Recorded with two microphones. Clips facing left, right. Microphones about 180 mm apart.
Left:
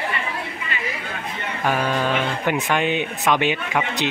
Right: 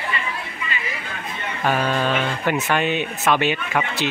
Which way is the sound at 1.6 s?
10° left (ahead or behind).